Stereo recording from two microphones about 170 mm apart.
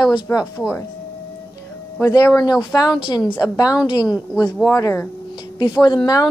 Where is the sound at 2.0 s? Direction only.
20° left (ahead or behind).